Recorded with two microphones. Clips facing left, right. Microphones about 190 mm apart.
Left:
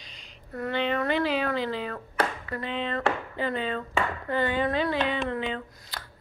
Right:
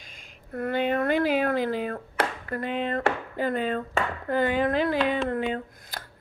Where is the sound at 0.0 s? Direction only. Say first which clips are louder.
Even; 50° right (ahead or behind).